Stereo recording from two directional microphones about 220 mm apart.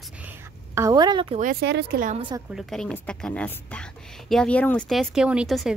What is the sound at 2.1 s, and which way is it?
Speech, 20° right (ahead or behind).